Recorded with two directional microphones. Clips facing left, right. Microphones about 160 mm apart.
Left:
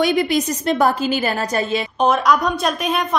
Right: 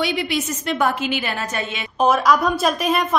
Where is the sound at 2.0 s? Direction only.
Centre (ahead or behind).